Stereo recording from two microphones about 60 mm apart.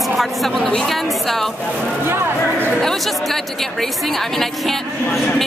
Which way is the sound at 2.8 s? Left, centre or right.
Centre.